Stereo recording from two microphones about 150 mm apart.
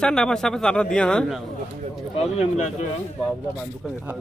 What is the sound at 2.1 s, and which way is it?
Speech, 50° left (ahead or behind).